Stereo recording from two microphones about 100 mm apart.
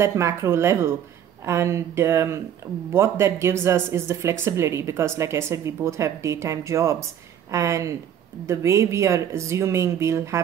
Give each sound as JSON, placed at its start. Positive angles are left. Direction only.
{"t": 0.0, "sound": "a woman's voice", "side_deg": -30}